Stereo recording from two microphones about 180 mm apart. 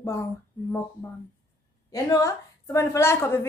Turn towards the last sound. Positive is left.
turn(degrees=15)  # may be behind; listen again after turning